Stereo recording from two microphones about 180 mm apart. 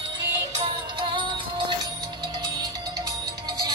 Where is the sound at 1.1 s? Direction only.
25° right (ahead or behind).